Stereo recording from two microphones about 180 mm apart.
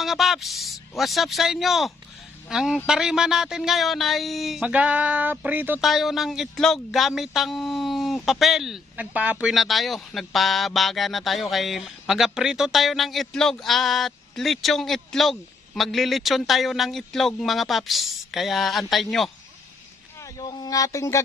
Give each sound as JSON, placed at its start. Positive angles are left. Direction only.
{"t": 0.0, "sound": "speech", "side_deg": 0}
{"t": 20.3, "sound": "speech", "side_deg": 20}